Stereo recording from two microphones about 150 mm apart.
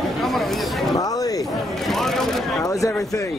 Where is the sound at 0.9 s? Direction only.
25° left (ahead or behind).